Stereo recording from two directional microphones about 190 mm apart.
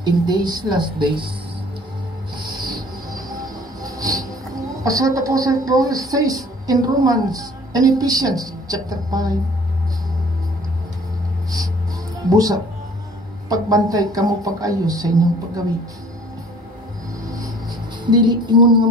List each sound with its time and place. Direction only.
0.0 s a woman's voice: 20° right (ahead or behind)
2.3 s rub: 25° right (ahead or behind)
3.2 s train: 20° right (ahead or behind)
4.8 s a woman's voice: 15° right (ahead or behind)
12.3 s a woman's voice: 20° right (ahead or behind)
18.1 s a woman's voice: 25° right (ahead or behind)